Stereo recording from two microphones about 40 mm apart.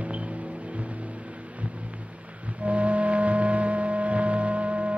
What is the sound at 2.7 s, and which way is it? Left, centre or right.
Music, right.